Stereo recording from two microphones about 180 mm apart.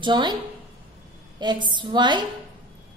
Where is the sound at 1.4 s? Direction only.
25° right (ahead or behind).